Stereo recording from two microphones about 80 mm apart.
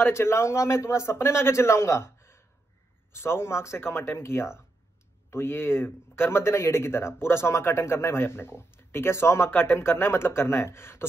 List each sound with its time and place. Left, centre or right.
0.0 s a man's voice: left